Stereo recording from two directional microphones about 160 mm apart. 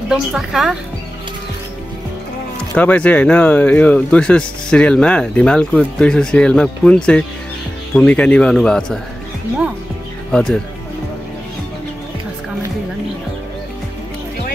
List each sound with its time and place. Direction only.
0.1 s a man's voice: 5° right (ahead or behind)
2.7 s a man's voice: 10° left (ahead or behind)
10.3 s a man's voice: 5° left (ahead or behind)